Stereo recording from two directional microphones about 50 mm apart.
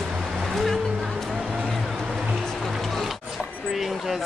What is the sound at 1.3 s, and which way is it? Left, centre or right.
Music, centre.